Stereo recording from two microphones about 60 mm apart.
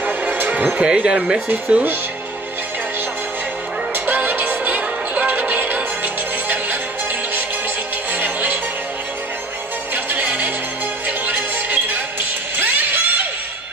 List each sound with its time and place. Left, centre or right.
0.2 s music: right
0.7 s speech: centre
3.9 s music: right
8.1 s music: right
9.9 s music: right